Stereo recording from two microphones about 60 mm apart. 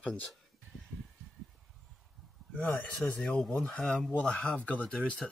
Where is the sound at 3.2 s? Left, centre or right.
Centre.